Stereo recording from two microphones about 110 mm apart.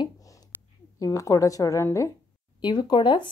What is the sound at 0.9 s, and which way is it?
A woman's voice, 30° left (ahead or behind).